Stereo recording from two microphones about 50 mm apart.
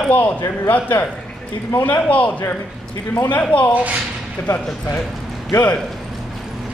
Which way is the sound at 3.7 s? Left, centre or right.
Right.